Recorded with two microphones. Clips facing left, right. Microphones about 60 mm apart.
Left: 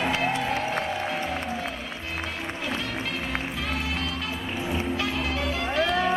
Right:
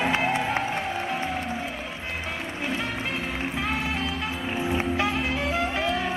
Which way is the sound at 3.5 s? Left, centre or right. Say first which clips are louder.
Right 2 dB; right.